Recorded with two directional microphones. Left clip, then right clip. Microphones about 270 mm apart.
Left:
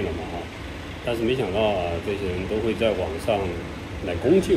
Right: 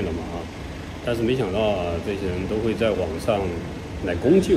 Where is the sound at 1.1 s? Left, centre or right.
Centre.